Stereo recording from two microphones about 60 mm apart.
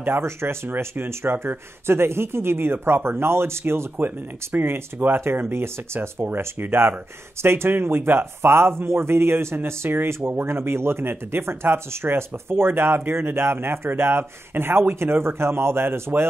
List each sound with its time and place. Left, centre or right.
0.0 s speech: right
5.1 s speech: right